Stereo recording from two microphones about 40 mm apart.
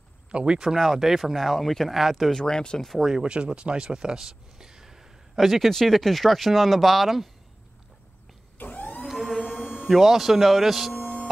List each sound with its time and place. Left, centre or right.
0.3 s speech: right
0.7 s speech: centre
2.3 s speech: centre
3.0 s speech: centre
3.3 s speech: right
5.3 s a man's voice: centre
8.6 s vehicle: left
9.0 s a sound: centre